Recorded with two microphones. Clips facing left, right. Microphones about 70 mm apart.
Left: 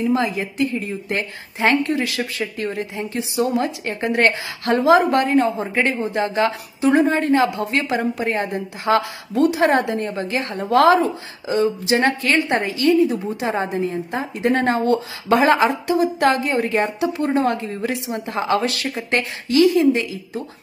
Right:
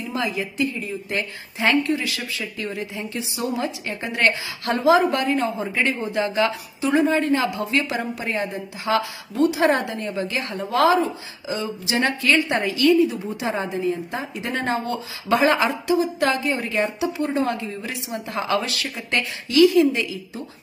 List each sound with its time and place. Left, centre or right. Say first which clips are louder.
0.1 s a woman's voice: left 5 dB; left